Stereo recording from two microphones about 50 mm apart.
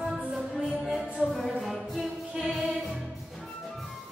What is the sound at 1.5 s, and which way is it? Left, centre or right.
Music, centre.